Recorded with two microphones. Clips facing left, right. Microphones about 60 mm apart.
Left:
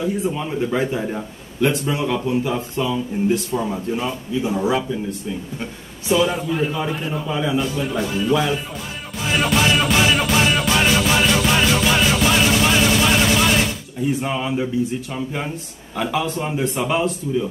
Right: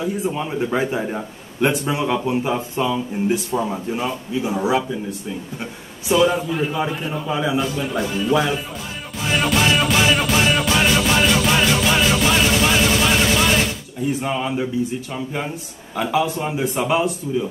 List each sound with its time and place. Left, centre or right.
0.3 s a man's voice: centre
6.0 s music: centre
7.2 s speech: centre
7.8 s music: centre
8.3 s speech: centre
9.2 s music: centre
16.0 s music: centre
16.3 s speech: centre